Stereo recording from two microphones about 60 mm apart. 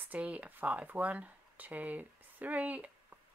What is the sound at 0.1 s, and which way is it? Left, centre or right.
Speech, right.